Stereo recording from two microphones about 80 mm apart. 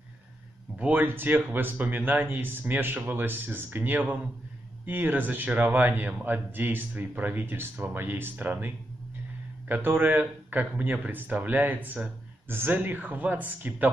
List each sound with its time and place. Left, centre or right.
0.7 s speech: right